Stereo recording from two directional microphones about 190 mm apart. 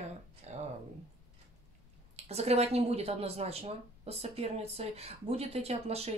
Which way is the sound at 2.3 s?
35° right (ahead or behind).